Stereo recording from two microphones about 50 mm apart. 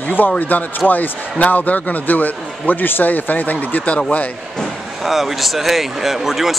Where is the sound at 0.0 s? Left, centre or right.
Left.